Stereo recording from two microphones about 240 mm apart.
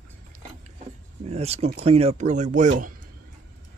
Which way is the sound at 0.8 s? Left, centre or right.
Right.